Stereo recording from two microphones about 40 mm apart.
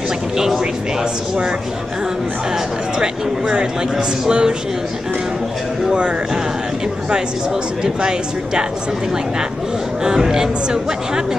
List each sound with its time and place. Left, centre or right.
3.0 s speech: right
5.9 s speech: right
7.8 s speech: centre
10.0 s speech: centre